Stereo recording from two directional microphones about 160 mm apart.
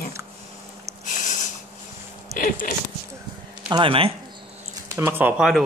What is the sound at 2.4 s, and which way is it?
Speech, 60° left (ahead or behind).